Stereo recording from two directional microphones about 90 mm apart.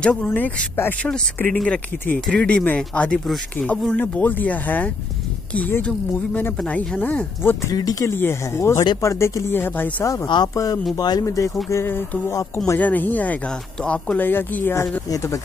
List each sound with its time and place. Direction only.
0.0 s speech: 15° left (ahead or behind)
7.6 s speech: 45° left (ahead or behind)
8.1 s speech: 25° left (ahead or behind)
10.2 s speech: 50° left (ahead or behind)
10.5 s speech: 40° left (ahead or behind)
11.7 s speech: 25° left (ahead or behind)
15.0 s speech: 40° left (ahead or behind)